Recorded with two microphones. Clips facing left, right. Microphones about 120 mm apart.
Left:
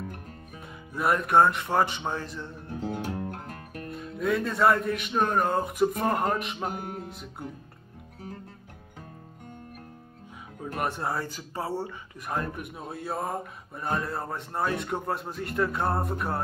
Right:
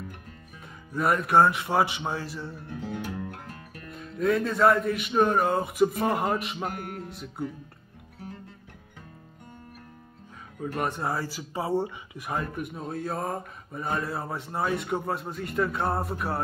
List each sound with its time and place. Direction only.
0.9 s speech: centre (ahead or behind)
2.8 s guitar: 40° left (ahead or behind)
3.5 s music: 50° left (ahead or behind)
3.9 s speech: centre (ahead or behind)
10.6 s speech: 5° left (ahead or behind); by 12.3 s 15° right (ahead or behind)
12.3 s speech: centre (ahead or behind)